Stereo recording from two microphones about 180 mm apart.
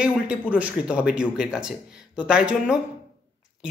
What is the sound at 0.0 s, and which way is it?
A man's voice, 5° right (ahead or behind).